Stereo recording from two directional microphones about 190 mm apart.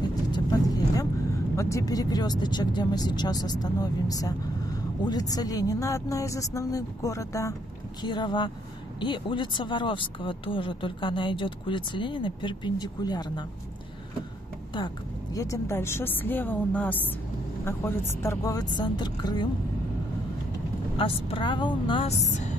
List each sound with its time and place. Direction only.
0.1 s vehicle: 20° left (ahead or behind)
1.6 s speech: 15° left (ahead or behind)
15.3 s speech: 15° left (ahead or behind)
21.0 s speech: 25° left (ahead or behind)
22.3 s music: 40° left (ahead or behind)